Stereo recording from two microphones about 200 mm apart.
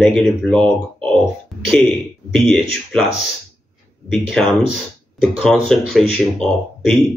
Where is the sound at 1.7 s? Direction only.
Centre (ahead or behind).